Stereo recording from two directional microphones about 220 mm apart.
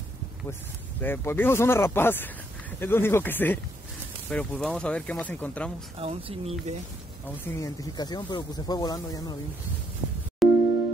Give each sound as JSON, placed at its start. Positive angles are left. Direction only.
{"t": 1.0, "sound": "speech", "side_deg": 10}
{"t": 5.9, "sound": "speech", "side_deg": -25}
{"t": 7.4, "sound": "speech", "side_deg": 15}
{"t": 10.4, "sound": "music", "side_deg": 0}